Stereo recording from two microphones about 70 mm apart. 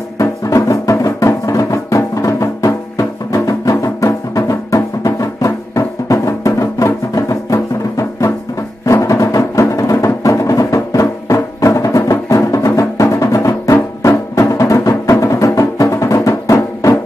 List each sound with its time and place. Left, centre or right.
0.2 s music: left